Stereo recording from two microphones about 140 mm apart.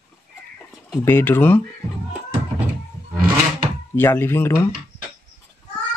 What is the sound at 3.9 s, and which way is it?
Speech, 15° left (ahead or behind).